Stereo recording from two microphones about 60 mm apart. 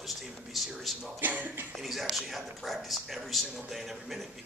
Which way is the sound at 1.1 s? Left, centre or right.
Right.